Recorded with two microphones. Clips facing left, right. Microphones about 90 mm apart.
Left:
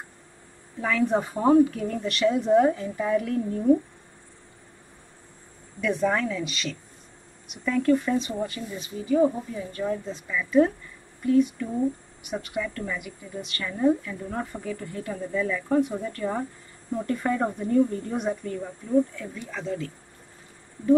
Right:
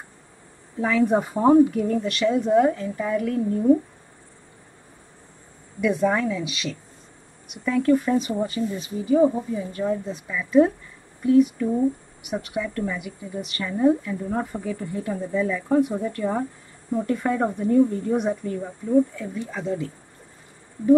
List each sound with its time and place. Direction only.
0.7 s a woman's voice: 10° right (ahead or behind)
5.8 s a woman's voice: 5° right (ahead or behind)